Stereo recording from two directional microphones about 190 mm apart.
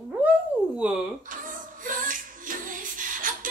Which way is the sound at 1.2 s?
45° right (ahead or behind).